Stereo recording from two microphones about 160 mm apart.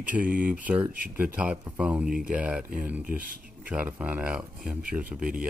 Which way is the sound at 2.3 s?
10° right (ahead or behind).